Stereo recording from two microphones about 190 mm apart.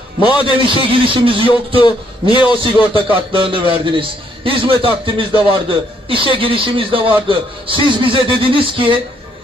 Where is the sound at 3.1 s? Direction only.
30° right (ahead or behind).